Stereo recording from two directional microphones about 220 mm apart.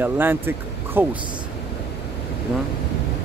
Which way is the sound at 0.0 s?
10° right (ahead or behind).